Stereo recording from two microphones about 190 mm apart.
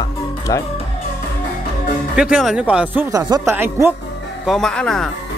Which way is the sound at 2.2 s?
5° right (ahead or behind).